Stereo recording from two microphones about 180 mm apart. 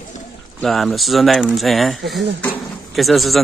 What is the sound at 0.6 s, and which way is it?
Speech, centre (ahead or behind).